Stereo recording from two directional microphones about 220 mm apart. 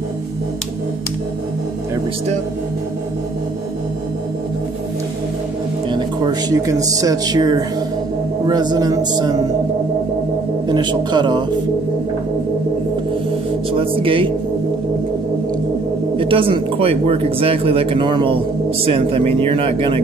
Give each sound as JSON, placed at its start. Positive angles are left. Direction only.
{"t": 5.9, "sound": "speech", "side_deg": -20}
{"t": 10.7, "sound": "speech", "side_deg": -20}
{"t": 13.7, "sound": "speech", "side_deg": -25}
{"t": 16.2, "sound": "speech", "side_deg": -25}